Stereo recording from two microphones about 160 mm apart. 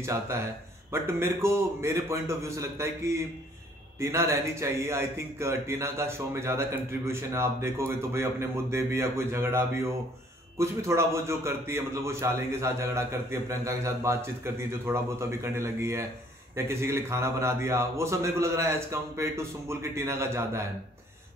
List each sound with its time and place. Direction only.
0.0 s speech: 15° right (ahead or behind)